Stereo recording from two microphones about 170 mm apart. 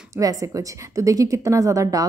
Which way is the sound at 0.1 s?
20° right (ahead or behind).